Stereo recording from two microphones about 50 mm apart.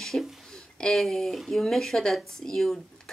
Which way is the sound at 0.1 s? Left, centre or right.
Centre.